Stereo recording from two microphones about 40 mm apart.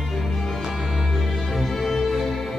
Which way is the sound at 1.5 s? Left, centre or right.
Centre.